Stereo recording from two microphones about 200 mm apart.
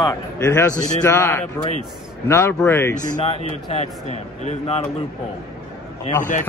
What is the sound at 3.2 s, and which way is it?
Speech, 30° left (ahead or behind).